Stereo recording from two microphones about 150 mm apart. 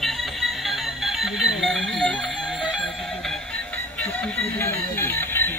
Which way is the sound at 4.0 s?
10° left (ahead or behind).